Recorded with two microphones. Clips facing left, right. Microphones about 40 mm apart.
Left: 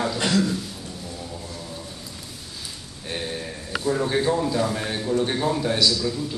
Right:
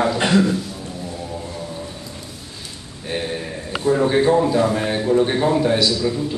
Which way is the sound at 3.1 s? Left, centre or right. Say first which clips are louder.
Right 5 dB; centre.